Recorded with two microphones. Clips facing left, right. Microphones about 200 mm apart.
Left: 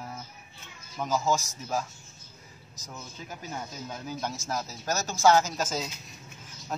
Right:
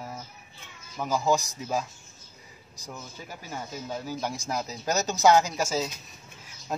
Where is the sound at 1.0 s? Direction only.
15° right (ahead or behind).